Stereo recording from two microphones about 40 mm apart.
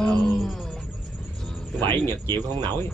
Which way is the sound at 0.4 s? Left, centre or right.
Centre.